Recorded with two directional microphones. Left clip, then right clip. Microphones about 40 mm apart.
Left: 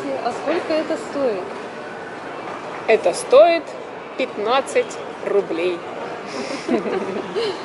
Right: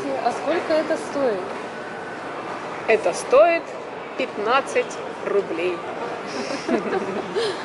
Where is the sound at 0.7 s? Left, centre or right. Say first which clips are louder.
Right 1 dB; centre.